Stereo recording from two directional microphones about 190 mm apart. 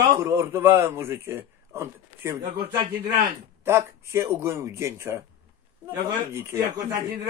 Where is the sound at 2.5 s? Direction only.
30° right (ahead or behind).